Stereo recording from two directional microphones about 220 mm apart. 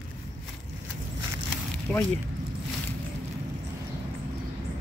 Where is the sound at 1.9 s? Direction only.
5° left (ahead or behind).